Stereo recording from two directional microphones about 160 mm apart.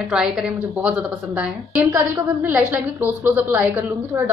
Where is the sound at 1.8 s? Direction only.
20° right (ahead or behind).